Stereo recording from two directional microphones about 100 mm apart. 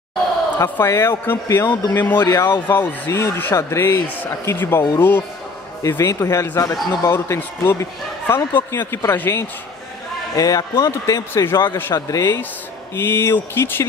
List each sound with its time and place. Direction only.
0.6 s a man's voice: 30° left (ahead or behind)
2.2 s speech: 40° left (ahead or behind)
2.7 s a man's voice: 20° left (ahead or behind)
10.3 s speech: 40° left (ahead or behind)
12.9 s a man's voice: 25° left (ahead or behind)